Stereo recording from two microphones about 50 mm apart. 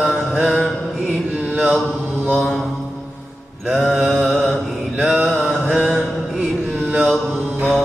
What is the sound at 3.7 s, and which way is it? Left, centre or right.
Mantra, centre.